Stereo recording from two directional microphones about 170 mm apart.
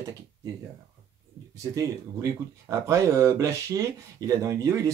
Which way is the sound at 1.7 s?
20° right (ahead or behind).